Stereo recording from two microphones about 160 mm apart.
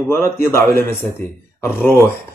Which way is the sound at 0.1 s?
15° left (ahead or behind).